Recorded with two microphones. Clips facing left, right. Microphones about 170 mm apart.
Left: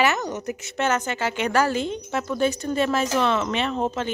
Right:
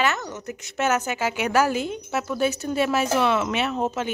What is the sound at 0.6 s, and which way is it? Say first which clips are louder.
Speech: right 2 dB; centre (ahead or behind).